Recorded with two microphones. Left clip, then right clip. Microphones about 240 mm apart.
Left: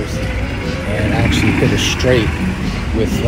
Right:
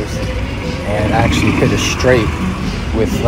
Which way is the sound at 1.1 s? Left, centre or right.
Centre.